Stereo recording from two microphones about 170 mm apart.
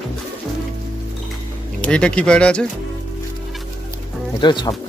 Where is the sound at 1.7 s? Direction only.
5° left (ahead or behind).